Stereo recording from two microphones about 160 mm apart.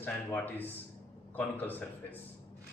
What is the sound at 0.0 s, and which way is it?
A man's voice, 10° left (ahead or behind).